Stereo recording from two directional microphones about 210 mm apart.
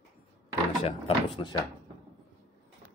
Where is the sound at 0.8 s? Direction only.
25° left (ahead or behind).